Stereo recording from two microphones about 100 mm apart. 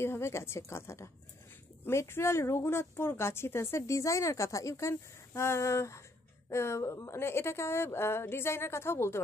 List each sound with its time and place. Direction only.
0.0 s speech: 25° left (ahead or behind)